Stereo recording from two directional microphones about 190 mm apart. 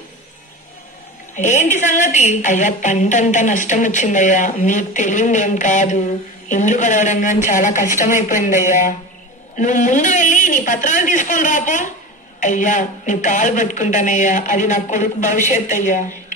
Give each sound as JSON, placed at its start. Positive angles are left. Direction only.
{"t": 1.3, "sound": "a woman's voice", "side_deg": 40}